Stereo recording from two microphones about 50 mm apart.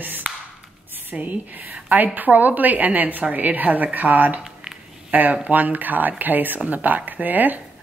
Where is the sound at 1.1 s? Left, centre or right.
Right.